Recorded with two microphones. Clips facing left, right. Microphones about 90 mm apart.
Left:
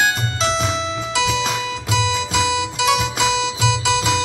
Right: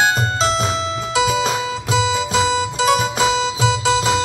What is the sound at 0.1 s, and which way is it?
Music, 35° right (ahead or behind).